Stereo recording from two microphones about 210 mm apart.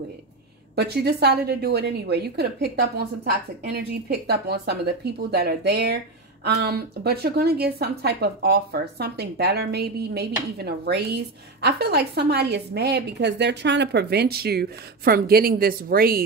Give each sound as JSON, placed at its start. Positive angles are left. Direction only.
{"t": 0.7, "sound": "a woman's voice", "side_deg": -50}